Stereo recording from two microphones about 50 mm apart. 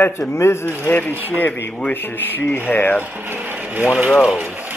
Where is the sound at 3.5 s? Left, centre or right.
Right.